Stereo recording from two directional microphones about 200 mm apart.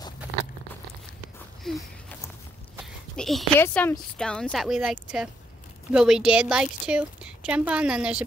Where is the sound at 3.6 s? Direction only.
10° left (ahead or behind).